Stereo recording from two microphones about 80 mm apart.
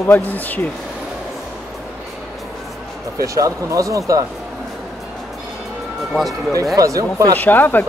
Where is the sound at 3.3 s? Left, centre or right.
Right.